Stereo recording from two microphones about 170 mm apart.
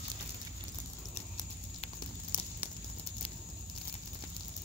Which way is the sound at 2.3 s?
55° left (ahead or behind).